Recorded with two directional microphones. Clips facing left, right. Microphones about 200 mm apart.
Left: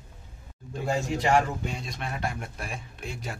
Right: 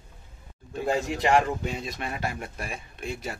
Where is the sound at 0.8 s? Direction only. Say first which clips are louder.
Right 1 dB; centre (ahead or behind).